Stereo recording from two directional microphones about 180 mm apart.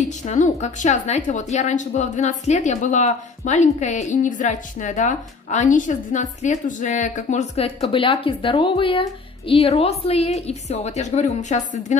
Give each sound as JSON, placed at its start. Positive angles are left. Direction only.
{"t": 0.0, "sound": "a woman's voice", "side_deg": 40}